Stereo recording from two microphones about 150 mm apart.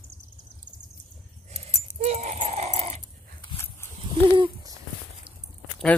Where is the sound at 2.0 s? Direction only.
50° right (ahead or behind).